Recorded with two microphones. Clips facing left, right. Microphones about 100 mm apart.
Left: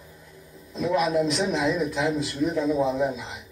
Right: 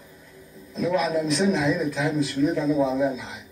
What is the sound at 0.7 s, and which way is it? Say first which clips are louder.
A man's voice: even; 15° left (ahead or behind).